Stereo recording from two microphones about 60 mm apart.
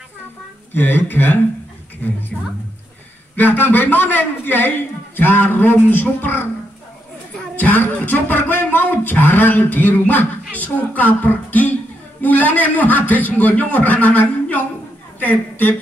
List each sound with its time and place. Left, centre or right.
0.7 s a man's voice: left
2.3 s a woman's voice: centre
3.3 s a man's voice: left
7.5 s a man's voice: left